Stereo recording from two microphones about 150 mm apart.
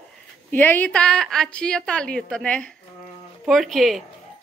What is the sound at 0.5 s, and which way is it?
A woman's voice, 10° left (ahead or behind).